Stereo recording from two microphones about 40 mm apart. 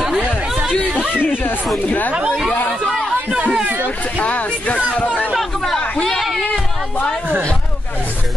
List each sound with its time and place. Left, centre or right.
0.0 s chatter: centre
1.2 s speech: left
3.3 s speech: right
4.2 s speech: left